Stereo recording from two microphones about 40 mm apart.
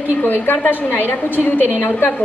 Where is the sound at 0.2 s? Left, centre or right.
Left.